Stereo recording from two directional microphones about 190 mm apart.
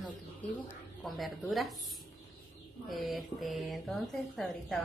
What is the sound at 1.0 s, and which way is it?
Speech, centre (ahead or behind).